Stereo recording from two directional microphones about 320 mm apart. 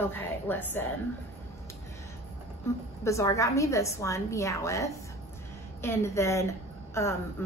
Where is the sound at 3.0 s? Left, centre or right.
Centre.